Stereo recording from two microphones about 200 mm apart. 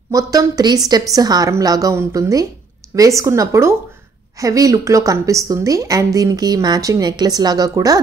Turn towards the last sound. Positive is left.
turn(degrees=-20)  # may be behind; listen again after turning